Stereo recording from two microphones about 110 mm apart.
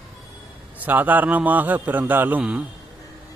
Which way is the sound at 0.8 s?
15° right (ahead or behind).